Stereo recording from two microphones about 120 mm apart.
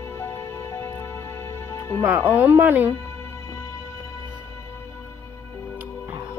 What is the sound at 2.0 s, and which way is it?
Speech, 15° right (ahead or behind).